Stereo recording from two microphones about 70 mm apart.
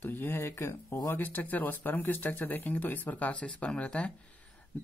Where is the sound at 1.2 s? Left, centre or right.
Left.